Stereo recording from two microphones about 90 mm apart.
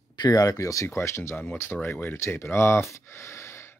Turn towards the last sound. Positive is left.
turn(degrees=30)  # may be behind; listen again after turning